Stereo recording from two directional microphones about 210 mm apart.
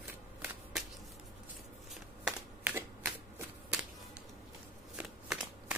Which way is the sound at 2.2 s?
10° right (ahead or behind).